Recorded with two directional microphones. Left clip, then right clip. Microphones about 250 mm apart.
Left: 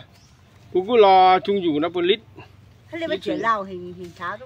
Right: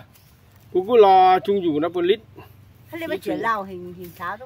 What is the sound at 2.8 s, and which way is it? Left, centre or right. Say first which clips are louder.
Speech: left 1 dB; right.